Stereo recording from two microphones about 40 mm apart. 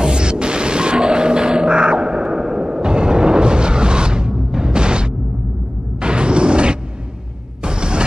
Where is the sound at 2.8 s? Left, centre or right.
Right.